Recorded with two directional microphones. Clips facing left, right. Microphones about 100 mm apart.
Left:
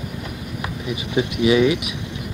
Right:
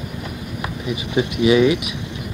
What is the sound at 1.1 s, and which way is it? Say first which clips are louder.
Speech: right 2 dB; 20° right (ahead or behind).